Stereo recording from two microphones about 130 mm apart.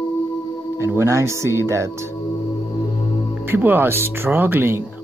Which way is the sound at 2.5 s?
40° left (ahead or behind).